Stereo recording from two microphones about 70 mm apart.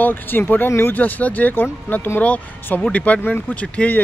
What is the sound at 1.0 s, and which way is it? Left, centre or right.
Speech, left.